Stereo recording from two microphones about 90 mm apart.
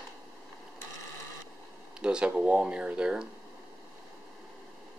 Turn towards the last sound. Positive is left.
turn(degrees=-10)  # may be behind; listen again after turning